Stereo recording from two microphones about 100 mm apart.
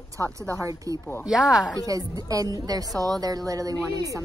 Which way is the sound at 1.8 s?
35° right (ahead or behind).